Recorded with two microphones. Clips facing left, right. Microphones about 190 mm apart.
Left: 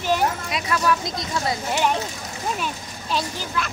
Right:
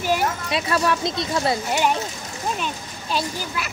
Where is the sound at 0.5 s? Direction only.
30° right (ahead or behind).